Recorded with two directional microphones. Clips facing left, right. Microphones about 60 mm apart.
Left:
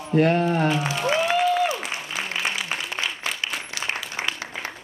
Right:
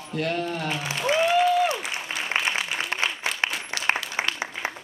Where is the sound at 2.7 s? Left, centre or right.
Left.